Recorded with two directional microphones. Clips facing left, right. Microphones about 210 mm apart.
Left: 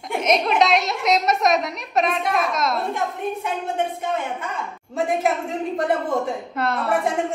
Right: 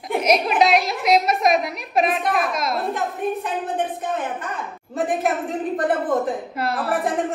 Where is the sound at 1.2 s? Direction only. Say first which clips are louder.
Right 1 dB; 55° right (ahead or behind).